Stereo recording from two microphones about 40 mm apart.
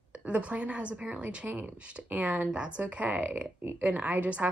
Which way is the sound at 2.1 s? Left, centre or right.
Right.